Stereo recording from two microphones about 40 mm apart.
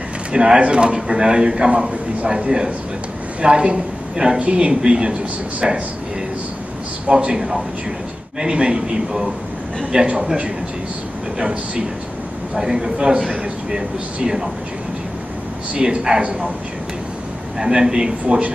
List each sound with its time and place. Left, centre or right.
0.3 s a man's voice: right
7.1 s a man's voice: right
7.3 s a man's voice: centre
11.3 s a man's voice: right
12.5 s speech: centre
15.7 s a man's voice: right
17.6 s speech: centre
18.2 s speech: right